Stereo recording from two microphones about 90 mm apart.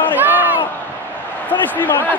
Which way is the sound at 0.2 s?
20° right (ahead or behind).